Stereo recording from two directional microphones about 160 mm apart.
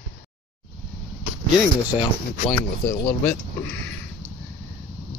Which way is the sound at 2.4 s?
10° left (ahead or behind).